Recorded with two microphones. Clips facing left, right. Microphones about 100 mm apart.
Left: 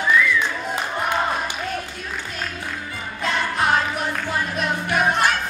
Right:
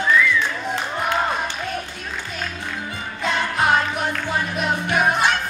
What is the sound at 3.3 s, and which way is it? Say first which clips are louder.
Music: right 1 dB; centre (ahead or behind).